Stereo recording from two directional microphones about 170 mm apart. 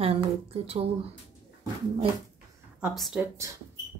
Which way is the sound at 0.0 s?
35° right (ahead or behind).